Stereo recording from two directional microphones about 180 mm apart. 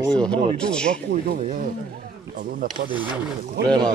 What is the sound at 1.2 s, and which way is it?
Speech, 45° right (ahead or behind).